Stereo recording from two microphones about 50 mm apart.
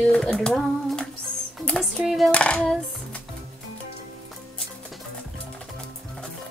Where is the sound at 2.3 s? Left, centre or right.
Centre.